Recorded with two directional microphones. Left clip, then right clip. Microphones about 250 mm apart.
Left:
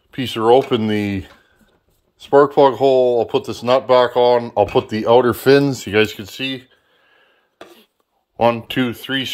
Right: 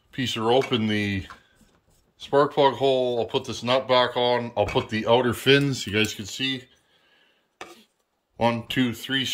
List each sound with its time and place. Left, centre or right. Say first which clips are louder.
0.1 s speech: left 9 dB; centre
8.4 s speech: left 7 dB; centre